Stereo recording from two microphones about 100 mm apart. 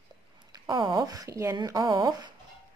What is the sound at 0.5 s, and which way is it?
Speech, 45° right (ahead or behind).